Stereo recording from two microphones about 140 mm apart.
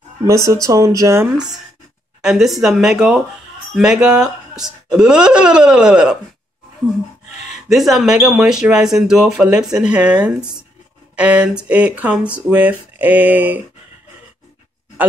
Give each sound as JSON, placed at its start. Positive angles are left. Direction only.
{"t": 0.5, "sound": "speech", "side_deg": -25}
{"t": 2.2, "sound": "speech", "side_deg": 0}
{"t": 7.7, "sound": "speech", "side_deg": 0}